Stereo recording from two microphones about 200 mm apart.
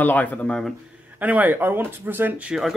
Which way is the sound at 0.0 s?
10° left (ahead or behind).